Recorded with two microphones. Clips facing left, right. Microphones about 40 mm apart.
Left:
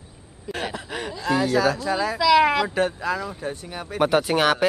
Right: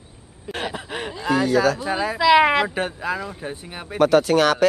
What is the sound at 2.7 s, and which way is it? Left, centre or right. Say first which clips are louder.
A man's voice: left 2 dB; centre.